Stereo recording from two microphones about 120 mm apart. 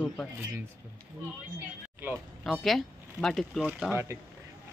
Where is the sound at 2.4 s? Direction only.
Centre (ahead or behind).